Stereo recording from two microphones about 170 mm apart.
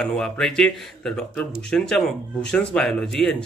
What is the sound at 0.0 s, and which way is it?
Speech, 5° left (ahead or behind).